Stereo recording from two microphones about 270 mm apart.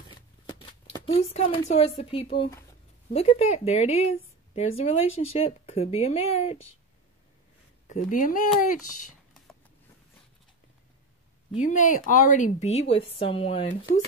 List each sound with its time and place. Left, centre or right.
0.6 s a sound: centre
1.3 s speech: left
7.9 s speech: left
11.6 s speech: left